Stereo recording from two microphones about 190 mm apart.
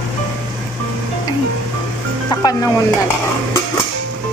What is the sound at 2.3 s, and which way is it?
Speech, 20° left (ahead or behind).